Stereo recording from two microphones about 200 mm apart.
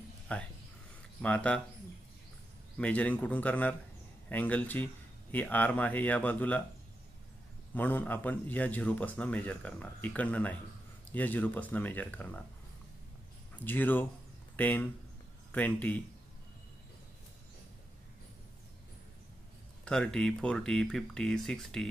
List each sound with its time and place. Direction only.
0.3 s speech: 5° left (ahead or behind)
2.8 s a man's voice: 5° left (ahead or behind)
7.7 s a man's voice: 10° left (ahead or behind)
13.7 s a man's voice: 10° left (ahead or behind)
19.8 s speech: 5° left (ahead or behind)